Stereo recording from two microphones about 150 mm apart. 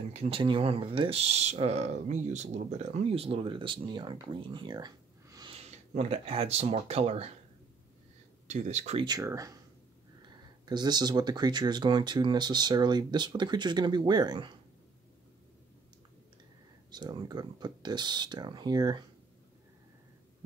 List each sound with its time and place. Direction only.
0.1 s speech: 40° right (ahead or behind)
5.6 s speech: 45° right (ahead or behind)
8.5 s speech: 50° right (ahead or behind)
9.0 s speech: 25° right (ahead or behind)
10.6 s speech: 30° right (ahead or behind)
16.9 s speech: 30° right (ahead or behind)